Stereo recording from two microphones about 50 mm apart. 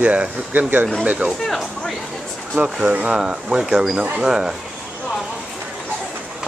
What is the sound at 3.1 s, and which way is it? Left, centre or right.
Speech, centre.